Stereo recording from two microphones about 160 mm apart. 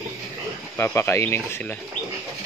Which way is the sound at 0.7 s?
15° left (ahead or behind).